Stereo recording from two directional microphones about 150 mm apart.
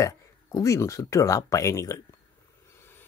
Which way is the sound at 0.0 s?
20° left (ahead or behind).